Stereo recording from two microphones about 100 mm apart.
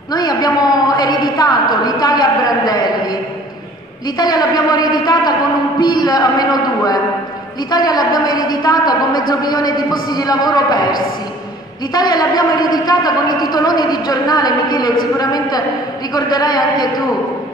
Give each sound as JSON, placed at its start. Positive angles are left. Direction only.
{"t": 0.1, "sound": "a woman's voice", "side_deg": 45}
{"t": 4.2, "sound": "a woman's voice", "side_deg": 45}
{"t": 5.8, "sound": "a sound", "side_deg": 45}
{"t": 7.7, "sound": "a woman's voice", "side_deg": 45}